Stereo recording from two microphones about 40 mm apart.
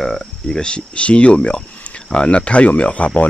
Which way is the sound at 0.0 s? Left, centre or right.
Centre.